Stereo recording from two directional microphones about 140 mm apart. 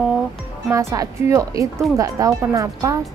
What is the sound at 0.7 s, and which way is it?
A woman's voice, 20° right (ahead or behind).